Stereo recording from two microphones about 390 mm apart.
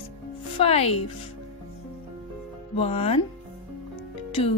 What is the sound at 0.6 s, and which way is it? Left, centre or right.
Speech, centre.